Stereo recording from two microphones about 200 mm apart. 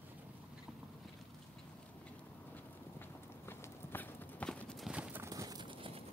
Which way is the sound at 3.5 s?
5° left (ahead or behind).